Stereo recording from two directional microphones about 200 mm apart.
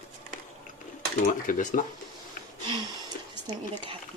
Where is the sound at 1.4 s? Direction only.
40° left (ahead or behind).